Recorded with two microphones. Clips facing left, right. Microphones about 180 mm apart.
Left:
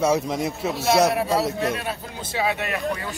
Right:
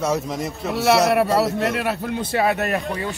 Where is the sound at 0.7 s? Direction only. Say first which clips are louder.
Right 3 dB; 70° right (ahead or behind); by 2.8 s 45° right (ahead or behind).